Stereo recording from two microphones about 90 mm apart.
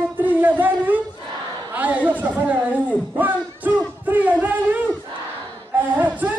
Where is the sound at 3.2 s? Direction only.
20° right (ahead or behind).